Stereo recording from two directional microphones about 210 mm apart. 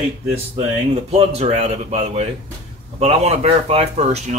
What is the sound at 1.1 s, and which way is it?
A man's voice, 30° right (ahead or behind).